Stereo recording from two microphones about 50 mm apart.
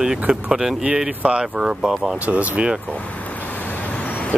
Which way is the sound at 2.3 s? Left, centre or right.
Right.